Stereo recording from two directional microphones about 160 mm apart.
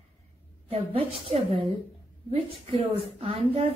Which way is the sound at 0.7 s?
40° right (ahead or behind).